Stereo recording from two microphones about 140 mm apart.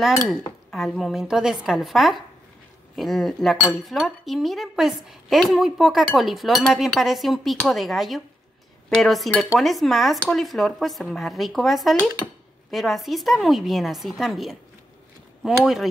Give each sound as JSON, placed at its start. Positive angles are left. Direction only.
{"t": 0.7, "sound": "speech", "side_deg": 5}